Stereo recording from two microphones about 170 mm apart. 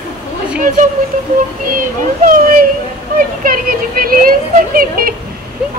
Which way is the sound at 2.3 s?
55° right (ahead or behind).